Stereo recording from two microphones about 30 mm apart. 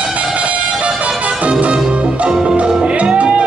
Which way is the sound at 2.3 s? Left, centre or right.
Right.